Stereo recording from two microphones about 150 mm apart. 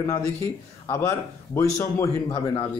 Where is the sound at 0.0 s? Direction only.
20° left (ahead or behind).